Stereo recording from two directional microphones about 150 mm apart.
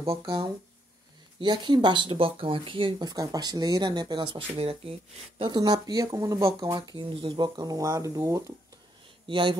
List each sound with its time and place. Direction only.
0.0 s speech: 25° right (ahead or behind)
9.3 s speech: 35° right (ahead or behind)